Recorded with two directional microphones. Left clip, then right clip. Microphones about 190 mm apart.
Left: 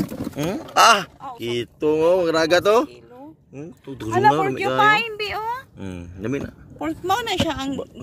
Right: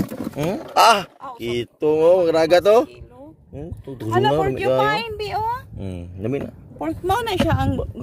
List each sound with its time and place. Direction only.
0.0 s speech: centre (ahead or behind)
4.6 s speech: 20° right (ahead or behind)
5.8 s speech: centre (ahead or behind)
6.8 s speech: 50° right (ahead or behind)